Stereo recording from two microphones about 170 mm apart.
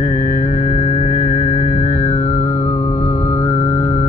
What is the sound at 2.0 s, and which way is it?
Music, 40° left (ahead or behind).